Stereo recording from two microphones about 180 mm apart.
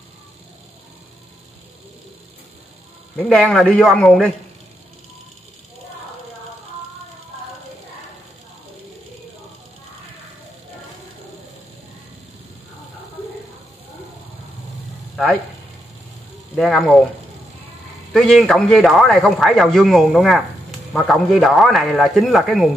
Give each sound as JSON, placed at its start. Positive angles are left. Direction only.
{"t": 3.2, "sound": "a man's voice", "side_deg": 5}
{"t": 15.1, "sound": "a sound", "side_deg": 0}
{"t": 16.5, "sound": "a man's voice", "side_deg": 0}
{"t": 18.1, "sound": "a man's voice", "side_deg": 0}